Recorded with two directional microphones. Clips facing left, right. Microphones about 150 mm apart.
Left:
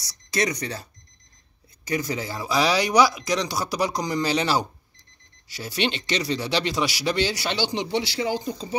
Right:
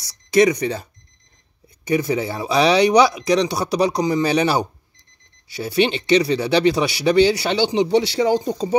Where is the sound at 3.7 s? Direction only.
15° right (ahead or behind).